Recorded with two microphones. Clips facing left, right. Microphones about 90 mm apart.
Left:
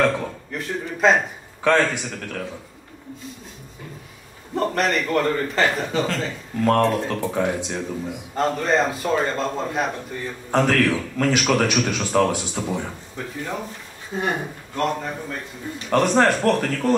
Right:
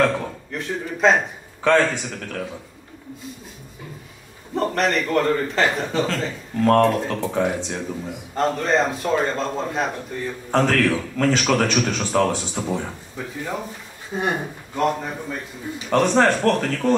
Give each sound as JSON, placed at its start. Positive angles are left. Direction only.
{"t": 0.0, "sound": "speech", "side_deg": 0}
{"t": 4.6, "sound": "speech", "side_deg": 0}